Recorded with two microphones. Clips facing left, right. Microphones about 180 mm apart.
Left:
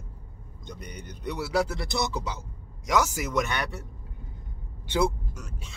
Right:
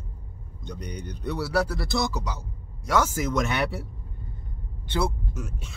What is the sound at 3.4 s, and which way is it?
Speech, 5° right (ahead or behind).